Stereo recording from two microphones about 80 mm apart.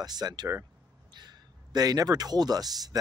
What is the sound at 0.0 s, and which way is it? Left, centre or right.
Speech, right.